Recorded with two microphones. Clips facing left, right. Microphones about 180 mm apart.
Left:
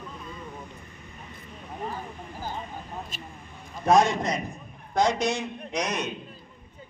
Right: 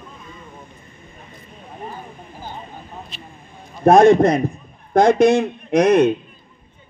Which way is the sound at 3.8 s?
55° right (ahead or behind).